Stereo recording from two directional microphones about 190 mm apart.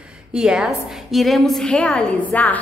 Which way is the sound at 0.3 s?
5° right (ahead or behind).